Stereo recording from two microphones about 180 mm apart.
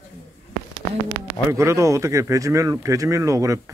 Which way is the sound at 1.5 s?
15° right (ahead or behind).